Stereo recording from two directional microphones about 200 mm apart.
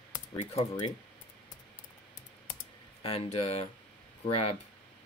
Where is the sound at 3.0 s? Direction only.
30° left (ahead or behind).